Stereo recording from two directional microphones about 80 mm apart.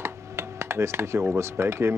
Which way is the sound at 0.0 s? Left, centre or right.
Right.